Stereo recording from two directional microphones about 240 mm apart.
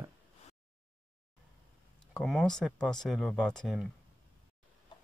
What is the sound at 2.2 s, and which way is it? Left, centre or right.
Speech, centre.